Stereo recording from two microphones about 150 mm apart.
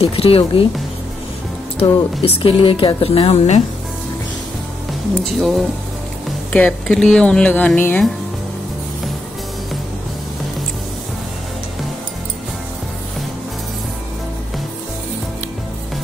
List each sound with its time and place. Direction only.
0.0 s speech: 40° left (ahead or behind)
1.8 s speech: 40° left (ahead or behind)
5.2 s speech: centre (ahead or behind)